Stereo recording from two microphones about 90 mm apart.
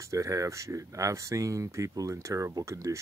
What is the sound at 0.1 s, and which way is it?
Speech, 40° right (ahead or behind).